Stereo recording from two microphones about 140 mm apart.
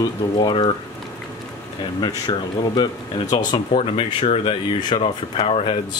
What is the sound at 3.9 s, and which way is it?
Speech, 45° left (ahead or behind).